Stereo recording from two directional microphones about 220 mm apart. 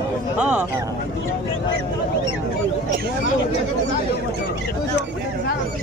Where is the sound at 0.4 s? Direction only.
5° right (ahead or behind).